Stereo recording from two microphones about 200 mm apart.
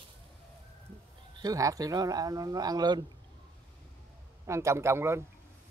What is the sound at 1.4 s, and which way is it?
Speech, 15° right (ahead or behind).